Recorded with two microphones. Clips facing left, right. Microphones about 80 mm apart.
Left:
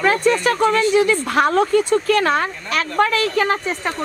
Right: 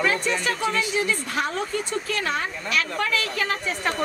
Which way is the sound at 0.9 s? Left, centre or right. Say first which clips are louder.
Left 9 dB; left.